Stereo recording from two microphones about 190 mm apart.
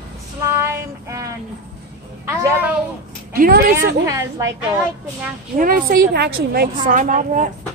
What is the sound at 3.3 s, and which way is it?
Speech, 55° right (ahead or behind).